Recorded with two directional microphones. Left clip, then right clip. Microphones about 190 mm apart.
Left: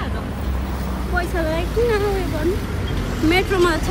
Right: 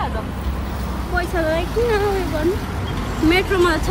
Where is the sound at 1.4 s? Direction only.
25° right (ahead or behind).